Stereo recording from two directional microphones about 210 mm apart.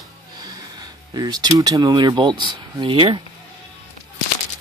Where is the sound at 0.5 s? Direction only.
20° right (ahead or behind).